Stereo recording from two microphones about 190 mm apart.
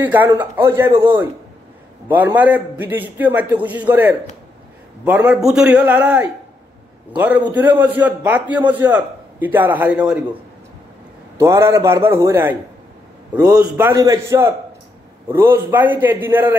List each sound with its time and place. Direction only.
0.0 s a man's voice: 10° right (ahead or behind)
7.2 s a man's voice: 10° right (ahead or behind)
11.3 s a man's voice: 15° right (ahead or behind)